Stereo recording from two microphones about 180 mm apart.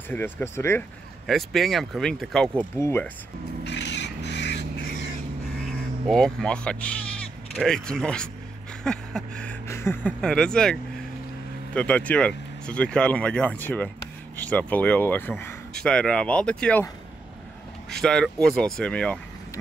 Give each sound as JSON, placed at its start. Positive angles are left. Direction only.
{"t": 0.1, "sound": "speech", "side_deg": 10}
{"t": 1.2, "sound": "speech", "side_deg": 0}
{"t": 3.6, "sound": "crow", "side_deg": 70}
{"t": 5.7, "sound": "speech", "side_deg": 0}
{"t": 17.8, "sound": "speech", "side_deg": 5}